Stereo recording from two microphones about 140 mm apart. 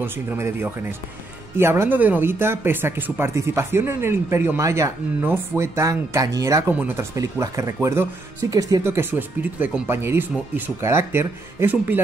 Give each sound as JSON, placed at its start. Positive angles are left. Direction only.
{"t": 0.0, "sound": "speech", "side_deg": -15}
{"t": 6.7, "sound": "speech", "side_deg": -10}
{"t": 7.2, "sound": "speech", "side_deg": -25}